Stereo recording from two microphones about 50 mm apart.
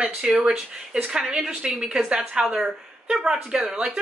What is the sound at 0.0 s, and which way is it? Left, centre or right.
Speech, centre.